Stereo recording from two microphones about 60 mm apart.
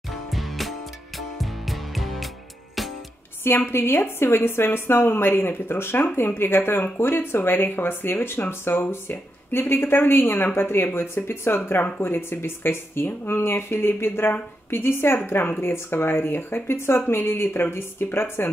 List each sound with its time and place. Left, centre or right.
0.1 s music: centre
3.4 s speech: left